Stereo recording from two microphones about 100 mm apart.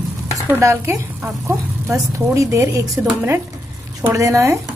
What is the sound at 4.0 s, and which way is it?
Speech, 35° right (ahead or behind).